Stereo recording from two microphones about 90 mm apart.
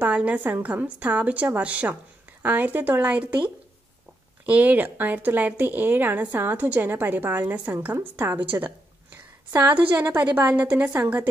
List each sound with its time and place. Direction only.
0.0 s a woman's voice: 15° right (ahead or behind)